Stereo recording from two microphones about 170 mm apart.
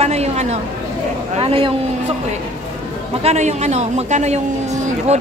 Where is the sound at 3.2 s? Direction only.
40° right (ahead or behind).